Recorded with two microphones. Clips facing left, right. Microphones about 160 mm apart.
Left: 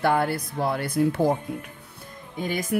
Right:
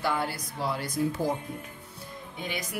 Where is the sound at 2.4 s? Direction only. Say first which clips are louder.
Left 8 dB; 45° left (ahead or behind).